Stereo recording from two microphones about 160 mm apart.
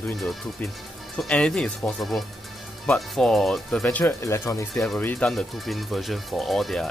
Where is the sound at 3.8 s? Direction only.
15° left (ahead or behind).